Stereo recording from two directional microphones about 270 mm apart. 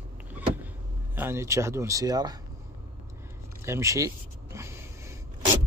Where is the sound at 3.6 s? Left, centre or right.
Centre.